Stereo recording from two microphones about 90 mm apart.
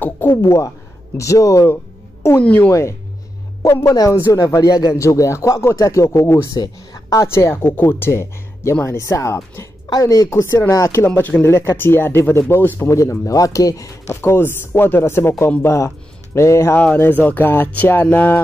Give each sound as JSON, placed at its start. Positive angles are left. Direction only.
{"t": 0.0, "sound": "a sound", "side_deg": 25}
{"t": 0.4, "sound": "speech", "side_deg": 35}
{"t": 2.4, "sound": "speech", "side_deg": 15}
{"t": 2.7, "sound": "speech", "side_deg": 30}
{"t": 5.0, "sound": "speech", "side_deg": 35}
{"t": 7.3, "sound": "speech", "side_deg": 30}
{"t": 9.8, "sound": "a woman's voice", "side_deg": 45}
{"t": 10.3, "sound": "speech", "side_deg": 25}
{"t": 14.0, "sound": "speech", "side_deg": 25}
{"t": 16.7, "sound": "speech", "side_deg": 20}